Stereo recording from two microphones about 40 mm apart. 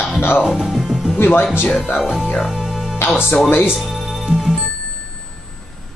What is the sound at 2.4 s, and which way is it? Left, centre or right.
Music, centre.